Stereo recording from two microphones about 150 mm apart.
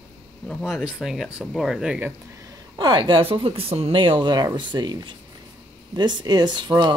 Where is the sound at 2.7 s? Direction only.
30° right (ahead or behind).